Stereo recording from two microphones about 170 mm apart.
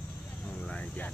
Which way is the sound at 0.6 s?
5° left (ahead or behind).